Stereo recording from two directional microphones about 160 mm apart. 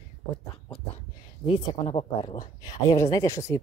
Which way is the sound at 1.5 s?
35° left (ahead or behind).